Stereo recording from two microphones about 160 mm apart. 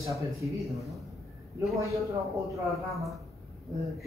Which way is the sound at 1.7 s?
20° right (ahead or behind).